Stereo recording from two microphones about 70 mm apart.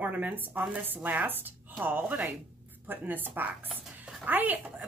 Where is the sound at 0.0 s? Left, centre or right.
Right.